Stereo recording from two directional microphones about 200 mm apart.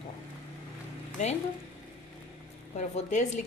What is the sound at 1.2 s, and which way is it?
Speech, 35° left (ahead or behind).